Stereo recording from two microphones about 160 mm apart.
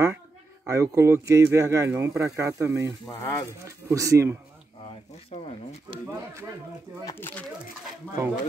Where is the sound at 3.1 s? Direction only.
15° left (ahead or behind).